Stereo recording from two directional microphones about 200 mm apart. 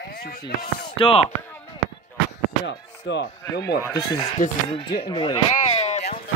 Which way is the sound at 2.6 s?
60° left (ahead or behind).